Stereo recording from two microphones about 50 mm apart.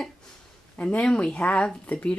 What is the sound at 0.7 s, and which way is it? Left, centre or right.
Speech, left.